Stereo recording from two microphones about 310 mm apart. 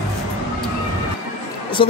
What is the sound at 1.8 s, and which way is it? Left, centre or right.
Speech, centre.